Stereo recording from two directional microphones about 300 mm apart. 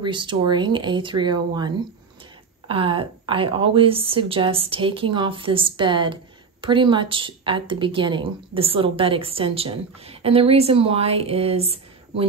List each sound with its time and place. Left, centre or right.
0.0 s a woman's voice: centre
2.7 s a woman's voice: centre